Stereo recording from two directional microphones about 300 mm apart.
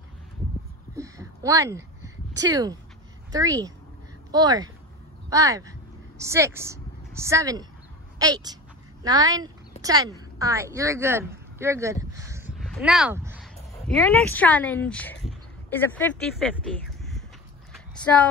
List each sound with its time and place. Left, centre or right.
0.9 s a sound: centre
2.3 s speech: centre
13.9 s a woman's voice: centre
18.0 s female singing: centre